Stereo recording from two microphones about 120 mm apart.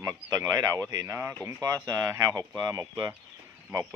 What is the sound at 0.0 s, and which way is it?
Speech, 30° right (ahead or behind).